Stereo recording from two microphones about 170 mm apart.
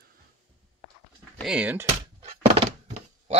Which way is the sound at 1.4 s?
5° right (ahead or behind).